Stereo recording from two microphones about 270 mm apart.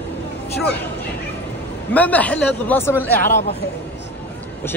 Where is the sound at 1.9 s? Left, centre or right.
Centre.